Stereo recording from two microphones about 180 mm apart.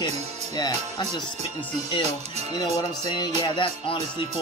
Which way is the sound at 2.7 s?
25° left (ahead or behind).